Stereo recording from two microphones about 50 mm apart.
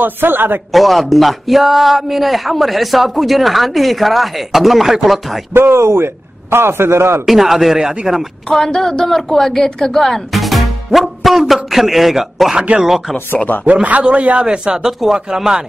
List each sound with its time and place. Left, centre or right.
0.0 s a man's voice: right
0.7 s a man's voice: centre
5.5 s a man's voice: right
5.8 s a man's voice: right
7.2 s a man's voice: centre
8.5 s a man's voice: centre
12.5 s speech: centre
13.5 s speech: left
14.0 s speech: right; by 15.6 s centre